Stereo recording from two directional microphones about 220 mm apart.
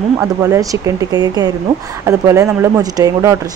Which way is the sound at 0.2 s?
15° right (ahead or behind).